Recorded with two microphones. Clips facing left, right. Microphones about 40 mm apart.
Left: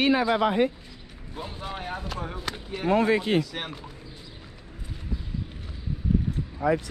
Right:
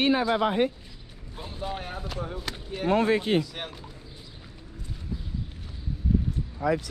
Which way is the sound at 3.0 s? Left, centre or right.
Left.